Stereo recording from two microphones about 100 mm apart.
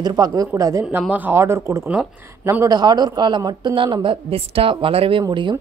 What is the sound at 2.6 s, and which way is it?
A woman's voice, 40° right (ahead or behind).